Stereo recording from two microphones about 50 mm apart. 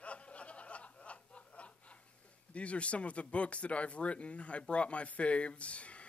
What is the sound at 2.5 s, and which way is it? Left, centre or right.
Speech, left.